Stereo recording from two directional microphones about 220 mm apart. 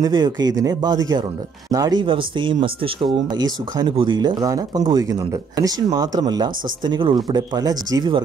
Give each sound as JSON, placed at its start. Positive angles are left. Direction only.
{"t": 0.0, "sound": "speech", "side_deg": -20}